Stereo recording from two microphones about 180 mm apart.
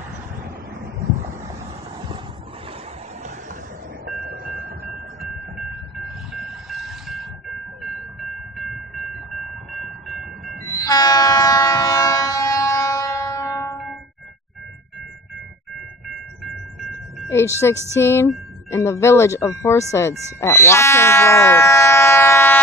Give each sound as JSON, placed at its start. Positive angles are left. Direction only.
{"t": 4.0, "sound": "train", "side_deg": -55}
{"t": 6.0, "sound": "train", "side_deg": 0}
{"t": 10.7, "sound": "train", "side_deg": 20}
{"t": 17.6, "sound": "speech", "side_deg": 15}